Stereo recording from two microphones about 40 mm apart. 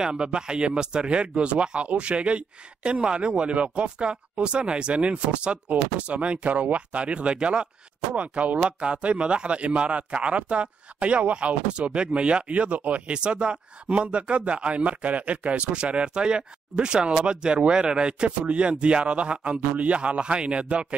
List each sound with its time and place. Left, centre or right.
0.0 s speech: right
13.1 s speech: right